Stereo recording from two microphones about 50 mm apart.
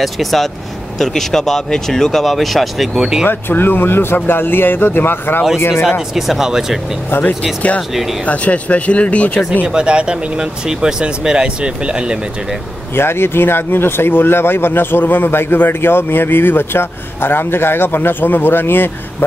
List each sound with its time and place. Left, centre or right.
0.0 s speech: centre
3.3 s speech: left
5.9 s speech: centre
7.1 s speech: left
7.9 s speech: centre
8.3 s speech: left
9.7 s speech: centre
12.9 s speech: left